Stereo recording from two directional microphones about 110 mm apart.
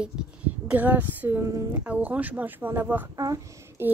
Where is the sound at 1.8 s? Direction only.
15° right (ahead or behind).